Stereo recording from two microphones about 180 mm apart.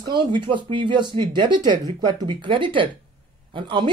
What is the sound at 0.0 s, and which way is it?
Speech, 25° right (ahead or behind).